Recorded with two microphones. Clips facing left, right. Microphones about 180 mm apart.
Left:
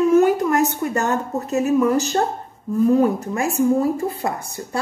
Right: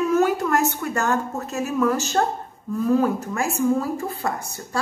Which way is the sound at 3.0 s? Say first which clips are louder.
Left 3 dB; 20° left (ahead or behind).